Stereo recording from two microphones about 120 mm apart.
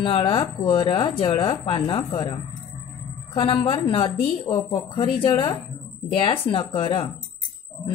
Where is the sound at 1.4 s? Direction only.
40° left (ahead or behind).